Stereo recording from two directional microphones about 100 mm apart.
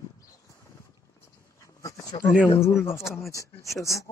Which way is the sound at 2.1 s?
50° left (ahead or behind).